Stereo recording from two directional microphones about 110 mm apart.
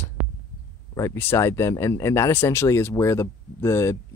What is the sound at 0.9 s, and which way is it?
Speech, 25° left (ahead or behind).